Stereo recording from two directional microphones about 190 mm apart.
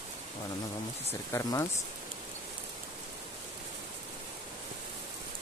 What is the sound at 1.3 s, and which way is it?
Speech, 10° left (ahead or behind).